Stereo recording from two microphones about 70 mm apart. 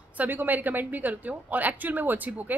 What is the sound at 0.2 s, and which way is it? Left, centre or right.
A woman's voice, right.